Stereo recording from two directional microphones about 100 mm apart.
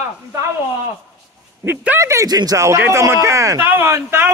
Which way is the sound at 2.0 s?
30° right (ahead or behind).